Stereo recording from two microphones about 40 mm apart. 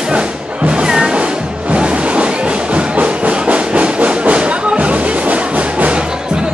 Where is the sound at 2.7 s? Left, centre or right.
Right.